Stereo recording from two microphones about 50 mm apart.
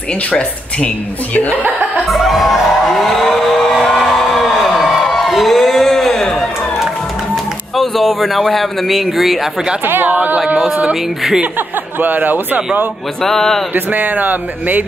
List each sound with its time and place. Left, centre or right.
0.3 s speech: left
1.8 s music: centre
7.7 s speech: centre
9.8 s speech: right
12.0 s speech: right
13.2 s a sound: centre
13.7 s speech: right